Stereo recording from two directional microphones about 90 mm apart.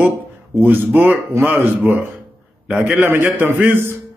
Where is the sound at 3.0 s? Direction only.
25° right (ahead or behind).